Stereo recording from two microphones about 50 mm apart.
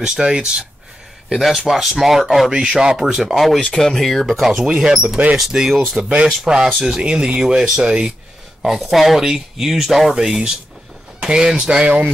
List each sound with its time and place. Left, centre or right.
0.0 s speech: centre
1.3 s speech: centre
2.5 s speech: centre
3.6 s speech: centre
5.7 s speech: centre
5.9 s speech: centre